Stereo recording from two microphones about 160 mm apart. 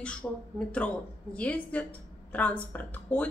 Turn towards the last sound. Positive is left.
turn(degrees=10)  # may be behind; listen again after turning